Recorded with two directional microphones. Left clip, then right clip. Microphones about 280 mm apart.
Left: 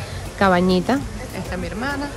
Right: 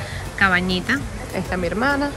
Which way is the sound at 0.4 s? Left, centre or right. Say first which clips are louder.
Left 1 dB; centre.